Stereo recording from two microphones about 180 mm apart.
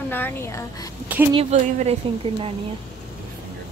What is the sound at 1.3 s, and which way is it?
Speech, 35° right (ahead or behind).